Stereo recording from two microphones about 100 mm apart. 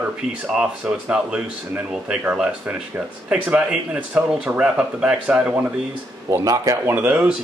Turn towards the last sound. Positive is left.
turn(degrees=-15)  # may be behind; listen again after turning